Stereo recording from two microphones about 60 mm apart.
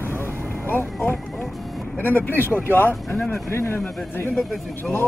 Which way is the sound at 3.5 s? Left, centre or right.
Left.